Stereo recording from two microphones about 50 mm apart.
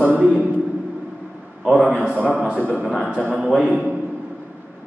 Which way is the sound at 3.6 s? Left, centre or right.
Right.